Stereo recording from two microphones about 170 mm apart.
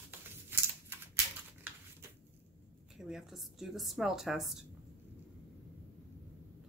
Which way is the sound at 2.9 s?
Centre (ahead or behind).